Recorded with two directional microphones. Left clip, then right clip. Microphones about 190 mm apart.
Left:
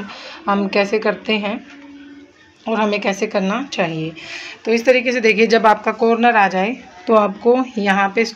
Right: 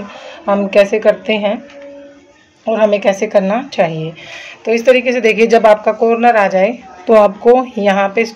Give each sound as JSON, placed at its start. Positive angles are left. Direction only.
{"t": 0.5, "sound": "speech", "side_deg": 20}
{"t": 2.6, "sound": "speech", "side_deg": 30}